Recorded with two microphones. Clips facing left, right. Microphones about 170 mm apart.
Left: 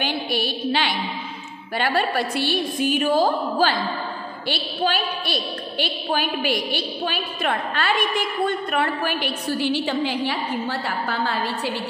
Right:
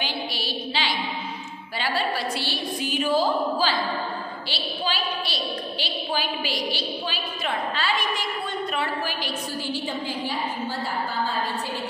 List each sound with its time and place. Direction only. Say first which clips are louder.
0.0 s a woman's voice: left 6 dB; 55° left (ahead or behind); by 11.7 s 75° left (ahead or behind)